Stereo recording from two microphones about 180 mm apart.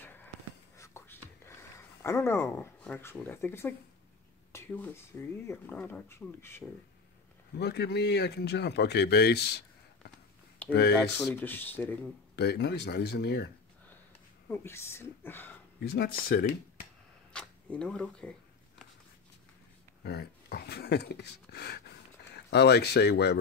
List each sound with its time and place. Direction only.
0.0 s a sound: 10° left (ahead or behind)
0.7 s writing: 15° left (ahead or behind)
2.0 s speech: 15° left (ahead or behind)
7.5 s speech: 65° left (ahead or behind)
11.1 s speech: 10° left (ahead or behind)
12.4 s speech: 65° left (ahead or behind)
14.5 s speech: 15° left (ahead or behind)
15.8 s speech: 60° left (ahead or behind)
17.3 s speech: 5° left (ahead or behind)
20.0 s speech: 65° left (ahead or behind)